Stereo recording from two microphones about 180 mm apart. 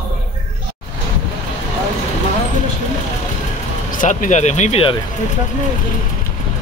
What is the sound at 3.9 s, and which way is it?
Speech, 50° left (ahead or behind).